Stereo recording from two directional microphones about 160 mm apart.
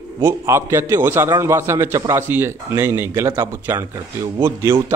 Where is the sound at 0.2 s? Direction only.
15° right (ahead or behind).